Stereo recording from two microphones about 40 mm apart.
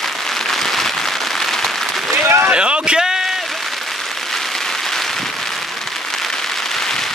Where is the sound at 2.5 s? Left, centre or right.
Right.